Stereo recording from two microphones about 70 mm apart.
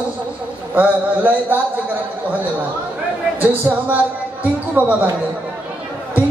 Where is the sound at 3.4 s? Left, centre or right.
Right.